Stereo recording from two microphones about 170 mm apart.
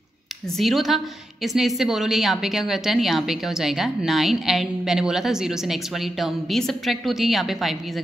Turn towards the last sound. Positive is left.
turn(degrees=0)  # may be behind; listen again after turning